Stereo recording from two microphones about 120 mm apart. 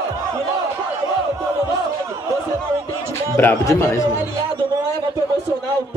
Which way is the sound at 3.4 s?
20° left (ahead or behind).